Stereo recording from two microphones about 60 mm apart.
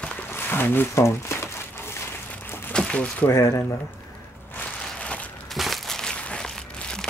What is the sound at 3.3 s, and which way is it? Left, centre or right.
Speech, left.